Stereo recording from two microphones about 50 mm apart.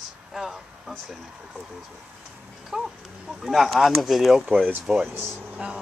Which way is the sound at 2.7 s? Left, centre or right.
Centre.